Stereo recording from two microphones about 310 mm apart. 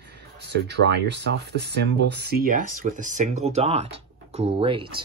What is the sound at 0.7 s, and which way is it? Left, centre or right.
Speech, right.